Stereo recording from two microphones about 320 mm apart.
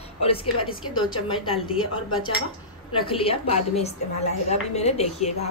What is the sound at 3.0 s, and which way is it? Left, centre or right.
A woman's voice, centre.